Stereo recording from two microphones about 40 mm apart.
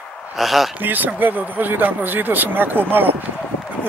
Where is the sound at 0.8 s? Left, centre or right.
Right.